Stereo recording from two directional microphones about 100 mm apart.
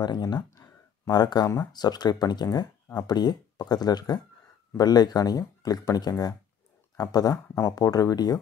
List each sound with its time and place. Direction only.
0.0 s speech: 45° left (ahead or behind)
0.6 s a sound: 40° left (ahead or behind)
1.7 s speech: 45° left (ahead or behind)